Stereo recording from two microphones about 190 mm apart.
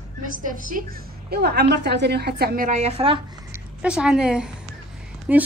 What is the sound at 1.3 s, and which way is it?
A woman's voice, 55° right (ahead or behind).